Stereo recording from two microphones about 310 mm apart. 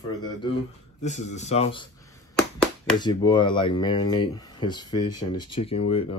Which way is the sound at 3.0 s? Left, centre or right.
Centre.